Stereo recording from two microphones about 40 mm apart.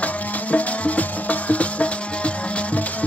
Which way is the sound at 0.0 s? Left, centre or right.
Left.